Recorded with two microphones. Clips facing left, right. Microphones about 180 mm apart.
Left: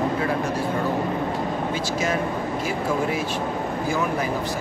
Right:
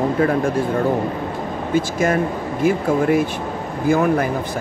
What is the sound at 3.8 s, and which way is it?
Speech, 55° right (ahead or behind).